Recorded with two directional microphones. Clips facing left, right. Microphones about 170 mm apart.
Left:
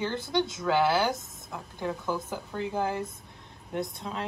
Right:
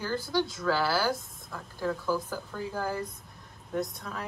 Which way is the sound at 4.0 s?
20° left (ahead or behind).